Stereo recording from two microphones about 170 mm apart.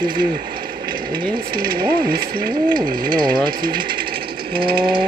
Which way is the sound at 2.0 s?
60° right (ahead or behind).